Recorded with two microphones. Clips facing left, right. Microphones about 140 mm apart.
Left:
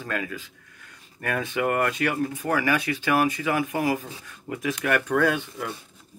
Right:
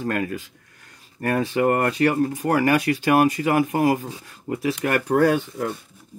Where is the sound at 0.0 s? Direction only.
40° right (ahead or behind).